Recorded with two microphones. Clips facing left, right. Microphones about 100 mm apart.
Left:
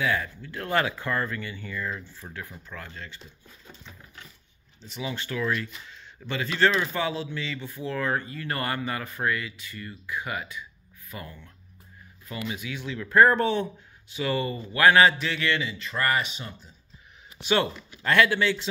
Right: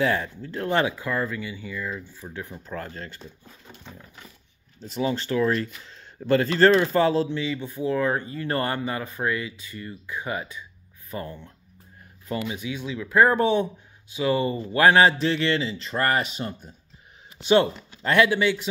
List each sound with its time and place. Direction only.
0.0 s speech: 35° right (ahead or behind)
0.9 s speech: 10° right (ahead or behind)
2.7 s speech: 40° right (ahead or behind)
4.8 s speech: 40° right (ahead or behind)
7.3 s speech: 20° right (ahead or behind); by 16.7 s 50° right (ahead or behind)
17.5 s speech: 20° right (ahead or behind)